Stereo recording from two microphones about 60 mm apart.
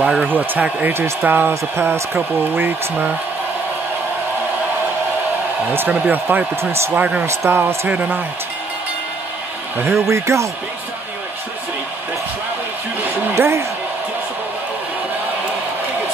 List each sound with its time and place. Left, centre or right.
0.0 s speech: centre
0.3 s speech: right
1.8 s speech: right
5.9 s speech: right
6.5 s speech: right
6.9 s speech: right
7.2 s speech: right
7.9 s speech: right
9.9 s speech: right
13.3 s speech: right